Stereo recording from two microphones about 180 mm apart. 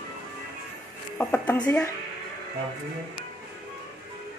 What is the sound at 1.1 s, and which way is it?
Speech, 5° left (ahead or behind).